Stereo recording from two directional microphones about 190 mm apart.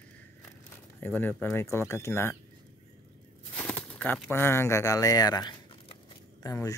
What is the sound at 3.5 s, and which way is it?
Speech, 5° left (ahead or behind).